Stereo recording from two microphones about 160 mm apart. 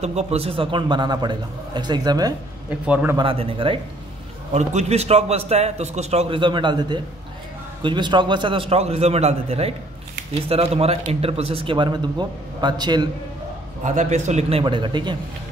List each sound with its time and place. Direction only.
0.0 s a man's voice: 45° right (ahead or behind); by 2.3 s 25° right (ahead or behind)
2.9 s a man's voice: 10° right (ahead or behind)
3.2 s a man's voice: 35° right (ahead or behind)
13.8 s a man's voice: 50° right (ahead or behind)
14.6 s a man's voice: 30° right (ahead or behind)